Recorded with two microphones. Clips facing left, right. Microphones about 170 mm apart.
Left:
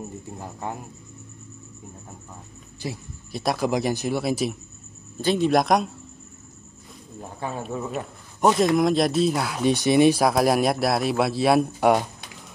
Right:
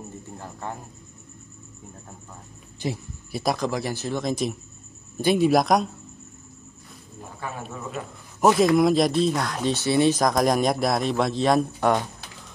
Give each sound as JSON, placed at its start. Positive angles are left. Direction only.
{"t": 0.4, "sound": "speech", "side_deg": 15}
{"t": 3.3, "sound": "speech", "side_deg": -5}
{"t": 3.5, "sound": "speech", "side_deg": 15}
{"t": 5.2, "sound": "speech", "side_deg": -10}
{"t": 8.4, "sound": "speech", "side_deg": 0}